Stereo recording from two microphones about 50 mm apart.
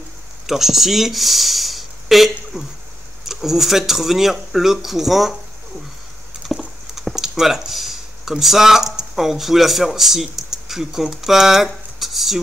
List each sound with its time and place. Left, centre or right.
0.5 s speech: centre
6.5 s clip-clop: centre
7.0 s speech: centre